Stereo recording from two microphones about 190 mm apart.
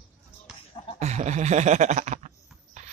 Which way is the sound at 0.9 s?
35° right (ahead or behind).